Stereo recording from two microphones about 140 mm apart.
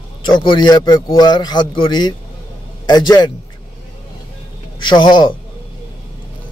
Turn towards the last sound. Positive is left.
turn(degrees=35)  # may be behind; listen again after turning